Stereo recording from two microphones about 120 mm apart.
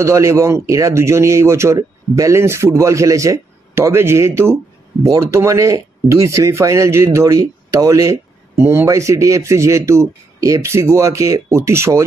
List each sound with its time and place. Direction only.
0.0 s speech: 25° right (ahead or behind)